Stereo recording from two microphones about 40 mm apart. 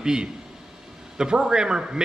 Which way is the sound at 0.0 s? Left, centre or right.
Centre.